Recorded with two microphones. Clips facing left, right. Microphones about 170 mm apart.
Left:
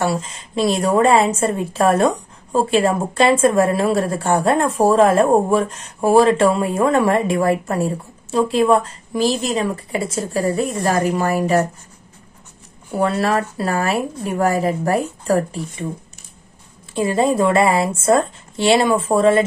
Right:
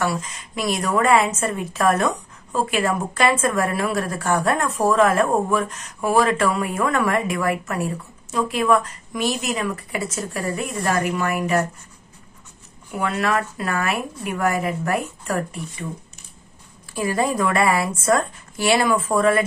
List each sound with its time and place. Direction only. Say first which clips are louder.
0.0 s a woman's voice: left 3 dB; 30° left (ahead or behind)
12.9 s a woman's voice: left 4 dB; 35° left (ahead or behind)
16.9 s a woman's voice: left 5 dB; 25° left (ahead or behind)